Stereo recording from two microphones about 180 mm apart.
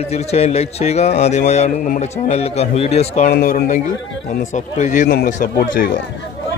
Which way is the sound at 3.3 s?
50° left (ahead or behind).